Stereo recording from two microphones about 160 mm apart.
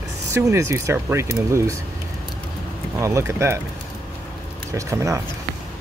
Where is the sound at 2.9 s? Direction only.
20° right (ahead or behind).